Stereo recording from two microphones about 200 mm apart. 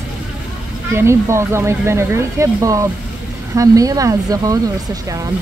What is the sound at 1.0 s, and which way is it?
Speech, 15° right (ahead or behind).